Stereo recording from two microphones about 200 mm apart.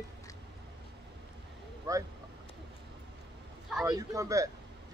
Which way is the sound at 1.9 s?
15° right (ahead or behind).